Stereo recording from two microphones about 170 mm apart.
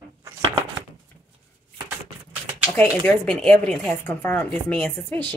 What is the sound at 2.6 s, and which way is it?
Speech, 10° left (ahead or behind).